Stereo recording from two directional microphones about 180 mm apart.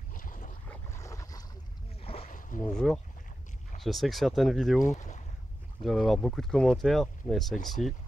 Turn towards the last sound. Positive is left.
turn(degrees=0)  # may be behind; listen again after turning